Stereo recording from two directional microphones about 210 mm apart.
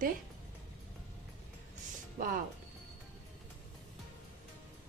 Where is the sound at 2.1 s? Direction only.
40° right (ahead or behind).